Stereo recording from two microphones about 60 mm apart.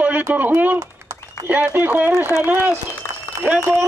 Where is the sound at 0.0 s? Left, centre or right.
Right.